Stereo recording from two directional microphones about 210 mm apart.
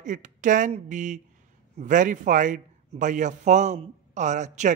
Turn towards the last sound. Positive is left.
turn(degrees=-35)  # may be behind; listen again after turning